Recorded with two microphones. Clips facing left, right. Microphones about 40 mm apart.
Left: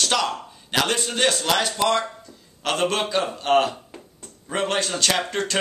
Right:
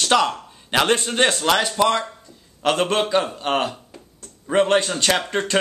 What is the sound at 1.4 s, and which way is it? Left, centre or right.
A man's voice, centre.